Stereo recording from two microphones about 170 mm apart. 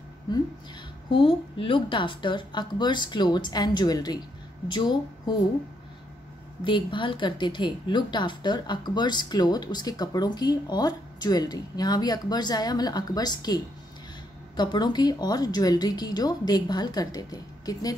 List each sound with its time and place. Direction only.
1.1 s a woman's voice: 30° left (ahead or behind)
6.6 s a woman's voice: 30° left (ahead or behind)
14.6 s a woman's voice: 25° left (ahead or behind)